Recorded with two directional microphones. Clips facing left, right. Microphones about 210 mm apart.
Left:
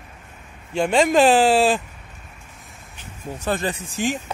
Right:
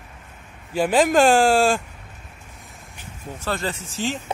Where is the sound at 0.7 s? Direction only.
5° right (ahead or behind).